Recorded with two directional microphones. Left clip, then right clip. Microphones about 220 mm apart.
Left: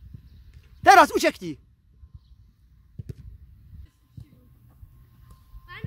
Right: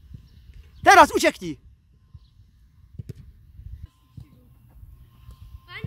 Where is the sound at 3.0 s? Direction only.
5° left (ahead or behind).